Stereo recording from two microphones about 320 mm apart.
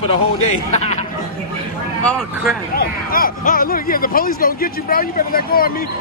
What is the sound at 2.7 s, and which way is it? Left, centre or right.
Speech, left.